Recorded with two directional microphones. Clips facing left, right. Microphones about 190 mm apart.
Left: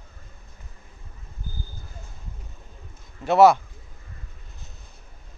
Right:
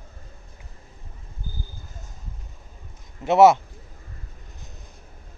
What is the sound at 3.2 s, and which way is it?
Speech, 20° right (ahead or behind).